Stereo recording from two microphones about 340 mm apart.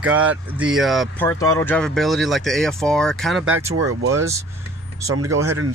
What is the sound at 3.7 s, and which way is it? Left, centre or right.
Speech, right.